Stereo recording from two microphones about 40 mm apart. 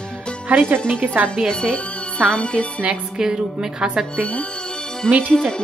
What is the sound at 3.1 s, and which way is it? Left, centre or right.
Speech, centre.